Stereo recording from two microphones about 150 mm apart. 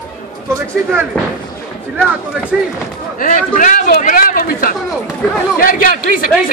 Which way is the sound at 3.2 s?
60° left (ahead or behind).